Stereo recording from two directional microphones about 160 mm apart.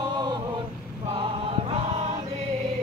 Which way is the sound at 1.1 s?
35° right (ahead or behind).